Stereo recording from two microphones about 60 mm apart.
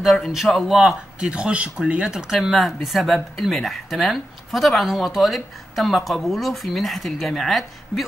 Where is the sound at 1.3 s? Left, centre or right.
Centre.